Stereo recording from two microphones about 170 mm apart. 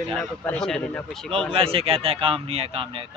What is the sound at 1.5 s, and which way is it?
Speech, 35° right (ahead or behind).